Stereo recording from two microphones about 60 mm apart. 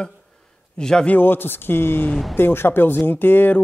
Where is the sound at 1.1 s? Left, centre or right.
Left.